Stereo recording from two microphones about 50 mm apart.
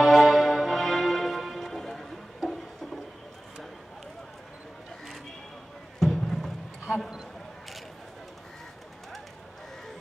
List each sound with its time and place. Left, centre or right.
0.0 s music: centre
6.1 s basketball bounce: centre